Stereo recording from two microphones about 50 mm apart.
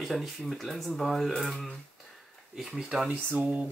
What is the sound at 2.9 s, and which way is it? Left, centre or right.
Speech, centre.